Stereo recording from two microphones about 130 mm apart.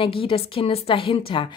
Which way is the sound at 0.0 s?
45° left (ahead or behind).